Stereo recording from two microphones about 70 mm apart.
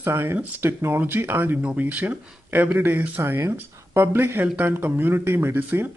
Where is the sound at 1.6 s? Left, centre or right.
Centre.